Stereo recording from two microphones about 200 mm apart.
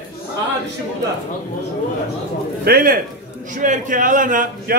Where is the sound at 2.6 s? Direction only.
50° right (ahead or behind).